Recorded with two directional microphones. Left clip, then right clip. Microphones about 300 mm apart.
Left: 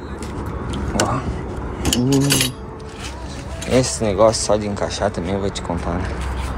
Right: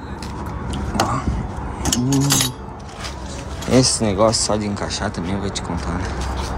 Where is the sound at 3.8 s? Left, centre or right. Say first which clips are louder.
Left 2 dB; centre.